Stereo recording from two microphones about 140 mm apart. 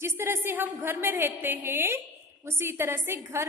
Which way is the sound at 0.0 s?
20° right (ahead or behind).